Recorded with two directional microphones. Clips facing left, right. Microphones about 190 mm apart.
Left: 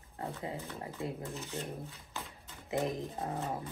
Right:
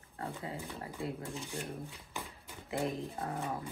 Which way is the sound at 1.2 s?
15° right (ahead or behind).